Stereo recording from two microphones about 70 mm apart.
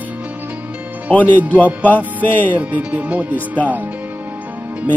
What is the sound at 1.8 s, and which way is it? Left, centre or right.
Speech, left.